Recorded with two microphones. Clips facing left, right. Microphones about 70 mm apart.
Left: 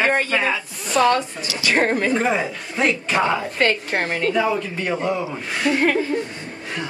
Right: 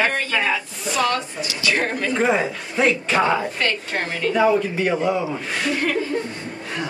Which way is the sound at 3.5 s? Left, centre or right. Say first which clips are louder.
Left 4 dB; left.